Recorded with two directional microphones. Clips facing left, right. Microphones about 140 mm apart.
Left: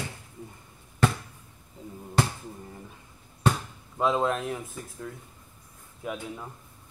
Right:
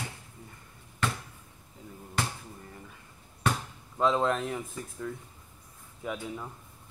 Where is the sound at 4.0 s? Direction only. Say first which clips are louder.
Left 1 dB; 5° left (ahead or behind).